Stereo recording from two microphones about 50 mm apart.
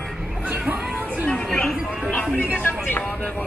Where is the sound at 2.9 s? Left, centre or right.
Left.